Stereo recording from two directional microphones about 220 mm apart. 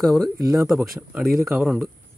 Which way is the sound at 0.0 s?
Centre (ahead or behind).